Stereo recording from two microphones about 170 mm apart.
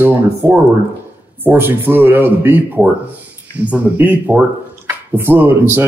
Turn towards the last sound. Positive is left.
turn(degrees=-15)  # may be behind; listen again after turning